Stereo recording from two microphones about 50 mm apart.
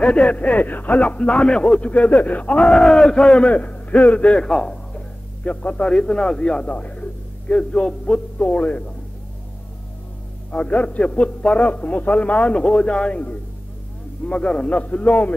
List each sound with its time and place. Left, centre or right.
0.0 s a man's voice: left
2.7 s a man's voice: centre
4.5 s music: centre
5.4 s a man's voice: left
5.9 s a man's voice: centre; by 8.9 s left
10.5 s a man's voice: left